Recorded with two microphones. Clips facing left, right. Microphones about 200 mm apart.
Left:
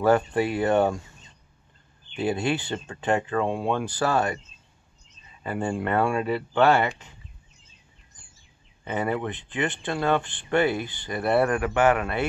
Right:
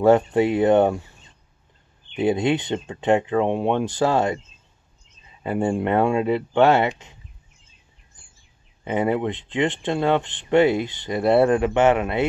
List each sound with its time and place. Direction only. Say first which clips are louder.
0.0 s speech: right 5 dB; 25° right (ahead or behind)
2.1 s speech: right 5 dB; 20° right (ahead or behind)
5.4 s speech: right 5 dB; 20° right (ahead or behind)
8.8 s speech: right 5 dB; 20° right (ahead or behind)